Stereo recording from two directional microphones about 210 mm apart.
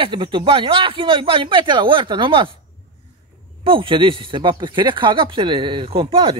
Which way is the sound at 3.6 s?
25° right (ahead or behind).